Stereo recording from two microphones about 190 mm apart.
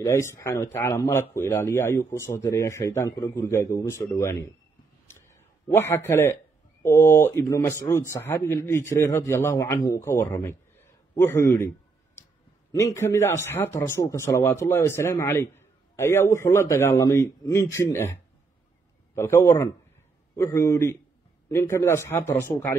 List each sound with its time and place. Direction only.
0.0 s speech: 15° left (ahead or behind)
5.0 s a sound: 10° left (ahead or behind)
6.8 s speech: 15° left (ahead or behind)
12.7 s speech: 15° left (ahead or behind)